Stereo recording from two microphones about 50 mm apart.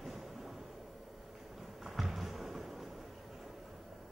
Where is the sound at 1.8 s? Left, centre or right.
Centre.